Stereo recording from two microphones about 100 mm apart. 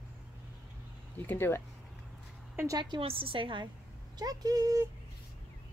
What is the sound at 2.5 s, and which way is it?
Speech, 25° right (ahead or behind).